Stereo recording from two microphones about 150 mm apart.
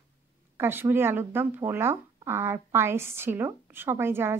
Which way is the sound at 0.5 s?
15° right (ahead or behind).